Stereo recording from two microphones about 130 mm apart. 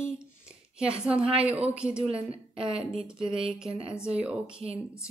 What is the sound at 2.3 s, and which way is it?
Speech, 45° right (ahead or behind).